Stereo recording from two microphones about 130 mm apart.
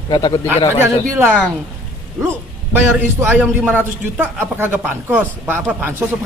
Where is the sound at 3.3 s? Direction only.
10° right (ahead or behind).